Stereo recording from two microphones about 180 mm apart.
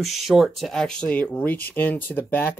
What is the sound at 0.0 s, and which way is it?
Speech, centre (ahead or behind).